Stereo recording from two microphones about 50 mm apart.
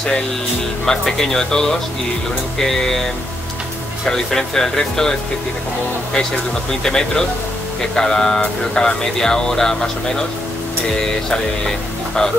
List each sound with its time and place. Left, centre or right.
0.8 s speech: centre
6.1 s speech: centre